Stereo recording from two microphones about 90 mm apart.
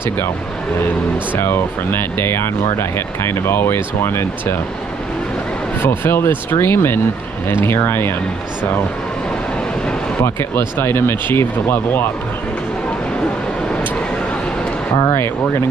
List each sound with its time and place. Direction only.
1.4 s speech: 25° left (ahead or behind)
5.8 s speech: 25° left (ahead or behind)
10.8 s speech: 25° left (ahead or behind)
15.0 s speech: 35° left (ahead or behind)